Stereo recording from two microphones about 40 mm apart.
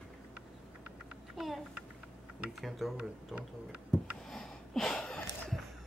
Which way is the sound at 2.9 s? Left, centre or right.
Right.